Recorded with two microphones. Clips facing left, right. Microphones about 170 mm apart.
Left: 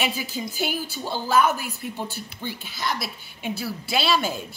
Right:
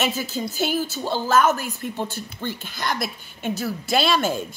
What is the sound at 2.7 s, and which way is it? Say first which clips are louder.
A woman's voice: right 1 dB; 50° right (ahead or behind).